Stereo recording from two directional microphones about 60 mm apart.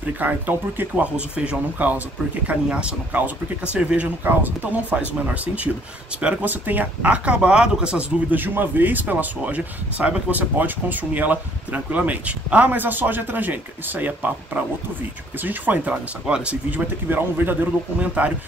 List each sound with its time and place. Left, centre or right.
0.2 s speech: right
1.1 s speech: centre
8.3 s speech: right
16.3 s speech: centre
16.7 s a man's voice: right
17.9 s speech: right